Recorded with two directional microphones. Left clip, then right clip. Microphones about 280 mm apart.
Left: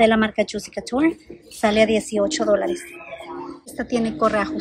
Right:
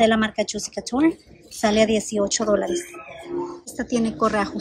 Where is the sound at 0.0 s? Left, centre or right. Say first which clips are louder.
Left 2 dB; centre.